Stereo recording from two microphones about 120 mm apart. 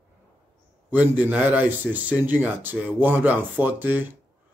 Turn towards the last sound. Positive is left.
turn(degrees=-15)  # may be behind; listen again after turning